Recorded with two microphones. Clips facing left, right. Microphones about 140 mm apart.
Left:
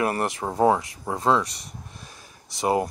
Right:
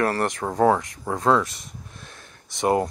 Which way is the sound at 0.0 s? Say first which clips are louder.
Right 2 dB; 10° left (ahead or behind).